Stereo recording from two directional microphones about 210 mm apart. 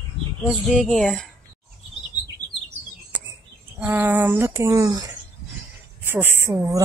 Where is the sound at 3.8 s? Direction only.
10° right (ahead or behind).